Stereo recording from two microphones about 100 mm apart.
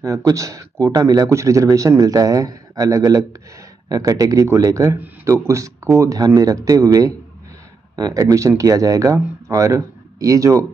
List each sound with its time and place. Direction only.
0.0 s speech: 35° right (ahead or behind)